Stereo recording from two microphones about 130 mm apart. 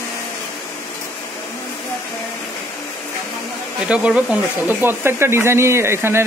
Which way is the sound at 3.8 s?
10° right (ahead or behind).